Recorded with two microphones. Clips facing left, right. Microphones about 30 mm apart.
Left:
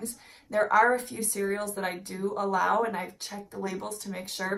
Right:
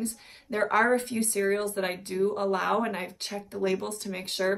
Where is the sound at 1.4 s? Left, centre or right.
Right.